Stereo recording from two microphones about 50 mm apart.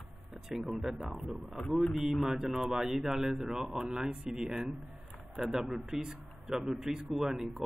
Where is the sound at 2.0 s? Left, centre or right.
Centre.